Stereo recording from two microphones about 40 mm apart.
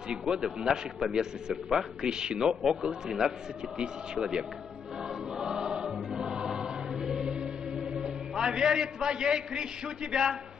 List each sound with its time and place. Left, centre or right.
0.1 s a man's voice: centre
5.4 s choir: right
10.1 s a man's voice: centre